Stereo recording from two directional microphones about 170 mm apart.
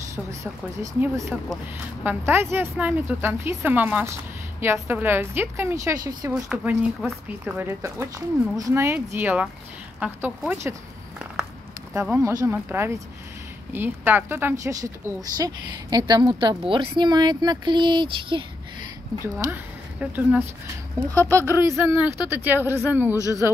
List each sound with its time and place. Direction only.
0.1 s speech: 20° right (ahead or behind)
1.3 s speech: 5° right (ahead or behind)
6.3 s speech: 5° right (ahead or behind)
7.1 s speech: 15° right (ahead or behind)
11.9 s a woman's voice: 15° right (ahead or behind)
19.2 s speech: 15° right (ahead or behind)
23.1 s a woman's voice: 20° left (ahead or behind)